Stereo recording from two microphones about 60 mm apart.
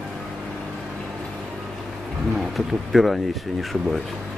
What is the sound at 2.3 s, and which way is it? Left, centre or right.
Speech, centre.